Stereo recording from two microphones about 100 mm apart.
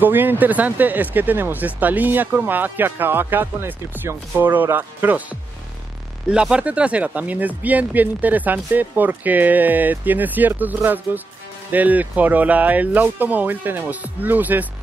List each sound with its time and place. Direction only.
0.0 s speech: 20° right (ahead or behind)